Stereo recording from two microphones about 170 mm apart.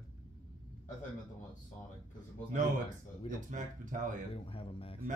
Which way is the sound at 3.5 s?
50° right (ahead or behind).